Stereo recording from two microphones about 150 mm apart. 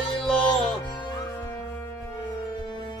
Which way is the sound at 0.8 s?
30° left (ahead or behind).